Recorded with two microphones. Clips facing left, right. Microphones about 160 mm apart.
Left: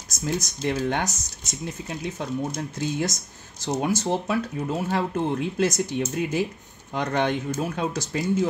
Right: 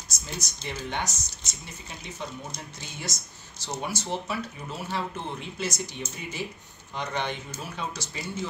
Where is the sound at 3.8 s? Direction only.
50° left (ahead or behind).